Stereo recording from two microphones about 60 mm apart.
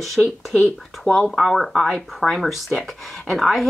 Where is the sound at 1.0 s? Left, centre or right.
Centre.